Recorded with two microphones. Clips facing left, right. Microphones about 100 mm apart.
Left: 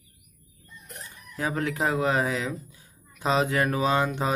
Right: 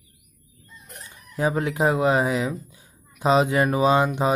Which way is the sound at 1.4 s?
20° right (ahead or behind).